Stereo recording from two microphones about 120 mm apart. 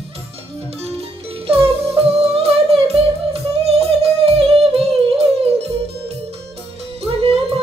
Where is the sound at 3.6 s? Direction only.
55° right (ahead or behind).